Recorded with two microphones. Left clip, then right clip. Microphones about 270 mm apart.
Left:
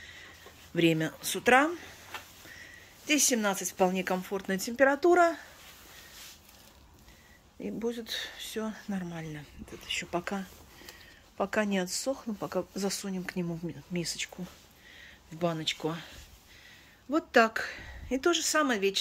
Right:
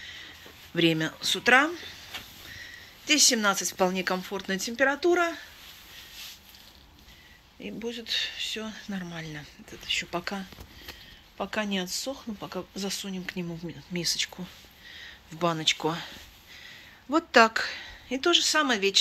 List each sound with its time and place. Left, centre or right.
0.7 s speech: centre
7.6 s speech: centre